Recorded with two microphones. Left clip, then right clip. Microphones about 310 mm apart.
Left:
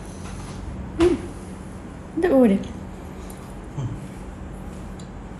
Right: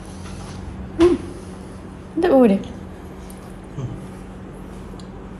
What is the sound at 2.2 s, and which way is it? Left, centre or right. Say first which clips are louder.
Speech: right 3 dB; right.